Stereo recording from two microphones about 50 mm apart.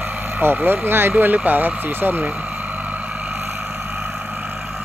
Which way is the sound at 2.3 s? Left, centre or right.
Right.